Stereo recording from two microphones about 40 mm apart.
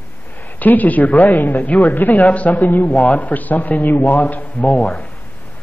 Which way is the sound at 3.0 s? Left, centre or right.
Left.